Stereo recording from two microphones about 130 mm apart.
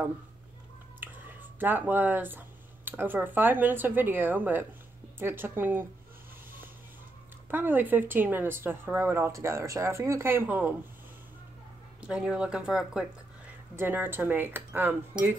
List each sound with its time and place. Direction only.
1.6 s speech: 15° right (ahead or behind)
7.5 s speech: 15° right (ahead or behind)
12.0 s speech: 5° right (ahead or behind)
13.7 s speech: 15° right (ahead or behind)